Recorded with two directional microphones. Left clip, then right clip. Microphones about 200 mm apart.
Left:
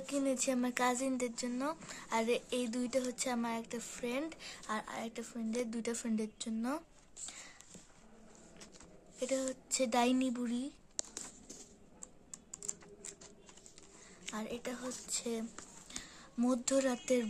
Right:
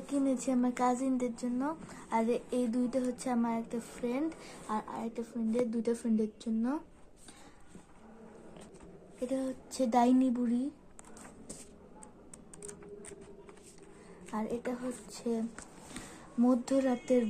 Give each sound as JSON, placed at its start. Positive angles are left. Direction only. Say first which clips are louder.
{"t": 0.0, "sound": "speech", "louder": "right 2 dB", "side_deg": 25}
{"t": 9.7, "sound": "speech", "louder": "right 4 dB", "side_deg": 20}
{"t": 14.3, "sound": "speech", "louder": "right 6 dB", "side_deg": 20}
{"t": 16.6, "sound": "speech", "louder": "right 2 dB", "side_deg": 20}